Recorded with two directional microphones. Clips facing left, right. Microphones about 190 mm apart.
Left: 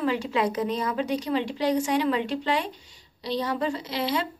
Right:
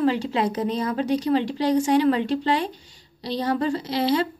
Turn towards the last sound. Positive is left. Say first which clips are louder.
# right 5 dB
turn(degrees=-35)  # may be behind; listen again after turning